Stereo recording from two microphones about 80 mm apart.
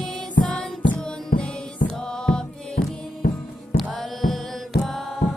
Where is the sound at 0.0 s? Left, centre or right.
Centre.